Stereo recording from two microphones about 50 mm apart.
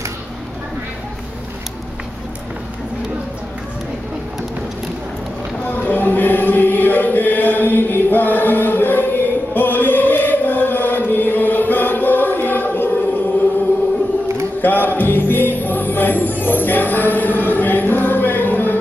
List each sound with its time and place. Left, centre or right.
5.7 s music: left
14.6 s music: left